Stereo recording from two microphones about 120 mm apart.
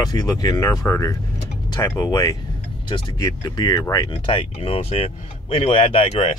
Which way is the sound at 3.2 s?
30° left (ahead or behind).